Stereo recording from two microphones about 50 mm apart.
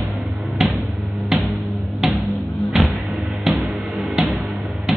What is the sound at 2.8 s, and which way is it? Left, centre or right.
Music, centre.